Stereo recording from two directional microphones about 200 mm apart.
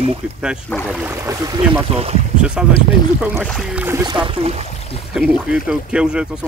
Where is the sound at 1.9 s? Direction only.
30° right (ahead or behind).